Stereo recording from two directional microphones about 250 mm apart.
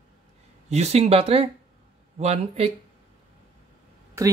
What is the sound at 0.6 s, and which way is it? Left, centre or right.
Speech, right.